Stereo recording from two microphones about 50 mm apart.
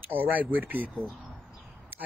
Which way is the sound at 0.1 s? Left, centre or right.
Right.